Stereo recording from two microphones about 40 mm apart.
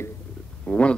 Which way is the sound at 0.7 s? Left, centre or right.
Left.